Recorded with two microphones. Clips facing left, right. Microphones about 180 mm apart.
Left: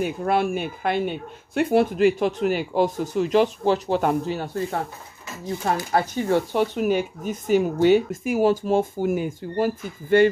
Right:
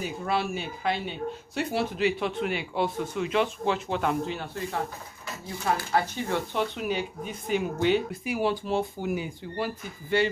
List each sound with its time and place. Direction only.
0.0 s speech: 50° left (ahead or behind)
5.9 s speech: 45° left (ahead or behind)